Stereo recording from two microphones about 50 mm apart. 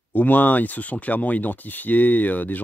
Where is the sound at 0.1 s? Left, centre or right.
Left.